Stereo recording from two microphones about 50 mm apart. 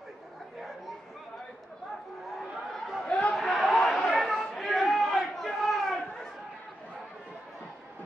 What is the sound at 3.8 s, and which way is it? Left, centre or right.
Chatter, centre.